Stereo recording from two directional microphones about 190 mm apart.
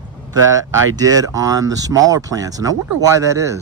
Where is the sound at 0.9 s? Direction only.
20° right (ahead or behind).